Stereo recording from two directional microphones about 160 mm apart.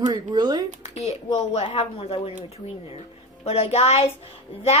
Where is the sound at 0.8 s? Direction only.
45° left (ahead or behind).